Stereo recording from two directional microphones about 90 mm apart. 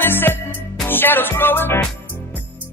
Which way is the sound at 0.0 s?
25° left (ahead or behind).